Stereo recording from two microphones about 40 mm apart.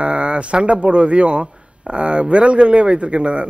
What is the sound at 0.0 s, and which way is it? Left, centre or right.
A man's voice, right.